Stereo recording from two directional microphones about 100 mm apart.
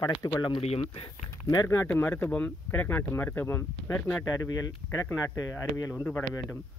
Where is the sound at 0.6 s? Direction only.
80° left.